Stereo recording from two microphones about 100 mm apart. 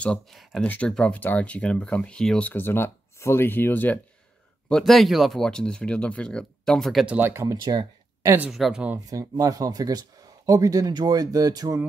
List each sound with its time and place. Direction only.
0.0 s speech: 5° left (ahead or behind)
2.5 s speech: 25° left (ahead or behind)
4.6 s speech: 5° left (ahead or behind)
7.1 s speech: 20° right (ahead or behind)
8.5 s speech: centre (ahead or behind)
9.1 s speech: 35° right (ahead or behind)